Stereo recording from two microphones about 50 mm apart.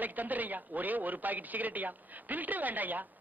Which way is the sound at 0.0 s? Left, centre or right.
Right.